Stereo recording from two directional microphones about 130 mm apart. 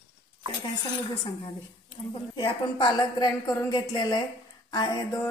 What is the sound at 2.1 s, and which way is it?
A woman's voice, 40° left (ahead or behind).